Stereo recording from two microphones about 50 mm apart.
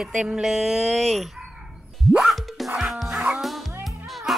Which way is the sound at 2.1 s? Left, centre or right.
Centre.